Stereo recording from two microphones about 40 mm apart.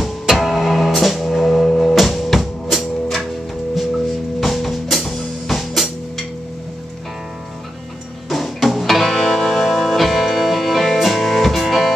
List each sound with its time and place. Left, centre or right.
0.4 s music: centre
4.4 s music: centre
8.3 s music: centre